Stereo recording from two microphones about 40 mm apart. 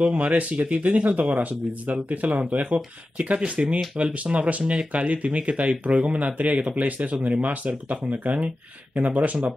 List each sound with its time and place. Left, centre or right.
0.0 s speech: right